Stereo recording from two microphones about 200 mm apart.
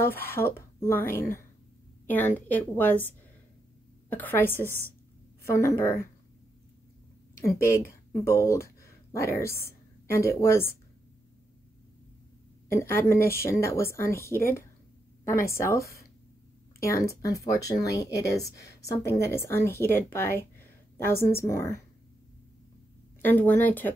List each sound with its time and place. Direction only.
0.0 s a woman's voice: 10° left (ahead or behind)
4.1 s a woman's voice: 10° left (ahead or behind)
7.6 s speech: 15° left (ahead or behind)
12.7 s a woman's voice: 15° left (ahead or behind)
18.1 s a woman's voice: 55° left (ahead or behind)
18.4 s a woman's voice: 15° left (ahead or behind)
23.2 s a woman's voice: 10° left (ahead or behind)